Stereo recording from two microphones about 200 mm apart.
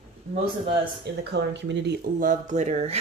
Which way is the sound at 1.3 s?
60° right (ahead or behind).